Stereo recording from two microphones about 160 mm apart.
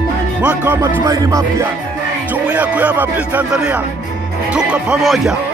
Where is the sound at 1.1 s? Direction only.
20° right (ahead or behind).